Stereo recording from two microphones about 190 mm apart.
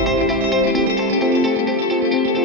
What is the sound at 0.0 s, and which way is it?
Music, centre (ahead or behind).